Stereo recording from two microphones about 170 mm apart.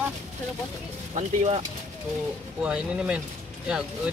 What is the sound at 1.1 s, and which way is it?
Speech, 40° right (ahead or behind).